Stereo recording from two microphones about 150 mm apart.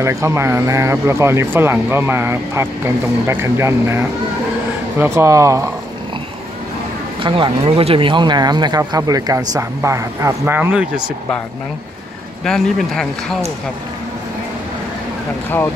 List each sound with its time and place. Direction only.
0.0 s speech: 20° right (ahead or behind)
7.2 s speech: 35° right (ahead or behind); by 11.1 s 10° right (ahead or behind)
12.4 s speech: 5° left (ahead or behind)